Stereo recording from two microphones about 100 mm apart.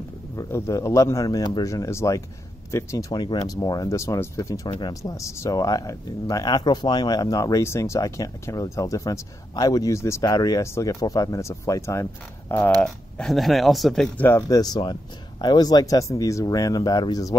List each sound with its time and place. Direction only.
0.4 s speech: 25° left (ahead or behind)
3.1 s speech: 45° left (ahead or behind)
4.7 s speech: 50° left (ahead or behind)
5.1 s speech: 30° left (ahead or behind)
12.8 s speech: 5° left (ahead or behind)
14.1 s speech: 20° left (ahead or behind)
14.5 s speech: 40° left (ahead or behind)
14.8 s speech: 55° left (ahead or behind); by 17.4 s 35° left (ahead or behind)